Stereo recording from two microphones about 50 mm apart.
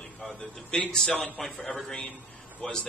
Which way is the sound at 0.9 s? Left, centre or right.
Centre.